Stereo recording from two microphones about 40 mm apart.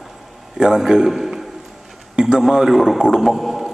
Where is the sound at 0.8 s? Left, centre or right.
Centre.